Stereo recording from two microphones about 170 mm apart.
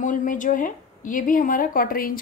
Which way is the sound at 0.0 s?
50° left (ahead or behind).